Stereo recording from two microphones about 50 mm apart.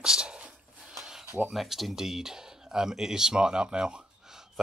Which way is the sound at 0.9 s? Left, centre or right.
Centre.